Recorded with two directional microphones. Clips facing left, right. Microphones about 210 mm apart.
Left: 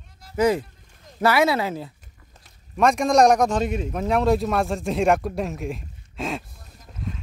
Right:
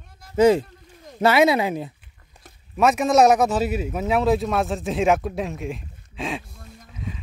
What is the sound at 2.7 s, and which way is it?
Speech, 5° right (ahead or behind).